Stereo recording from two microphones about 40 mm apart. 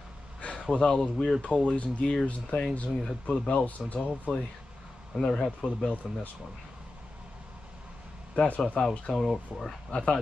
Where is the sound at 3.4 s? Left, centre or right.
Left.